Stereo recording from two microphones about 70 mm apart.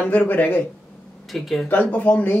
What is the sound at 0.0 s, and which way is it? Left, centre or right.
Speech, left.